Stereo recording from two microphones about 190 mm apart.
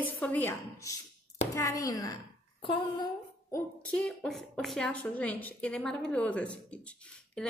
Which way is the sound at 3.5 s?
5° left (ahead or behind).